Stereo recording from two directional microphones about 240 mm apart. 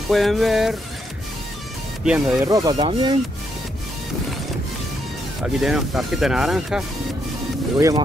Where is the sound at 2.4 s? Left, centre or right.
Centre.